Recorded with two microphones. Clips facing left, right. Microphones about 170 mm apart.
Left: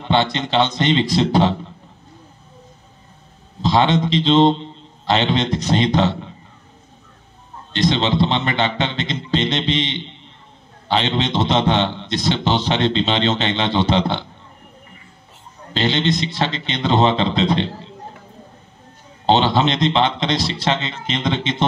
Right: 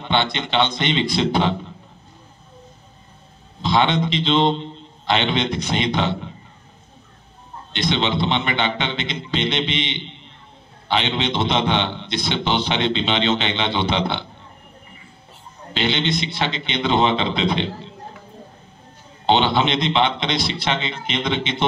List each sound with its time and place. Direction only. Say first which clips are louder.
0.0 s a man's voice: left 3 dB; 40° left (ahead or behind)
3.6 s a man's voice: left 2 dB; 40° left (ahead or behind)
7.7 s a man's voice: left 3 dB; 35° left (ahead or behind)
15.7 s a man's voice: left 3 dB; 40° left (ahead or behind)
19.2 s a man's voice: left 2 dB; 40° left (ahead or behind)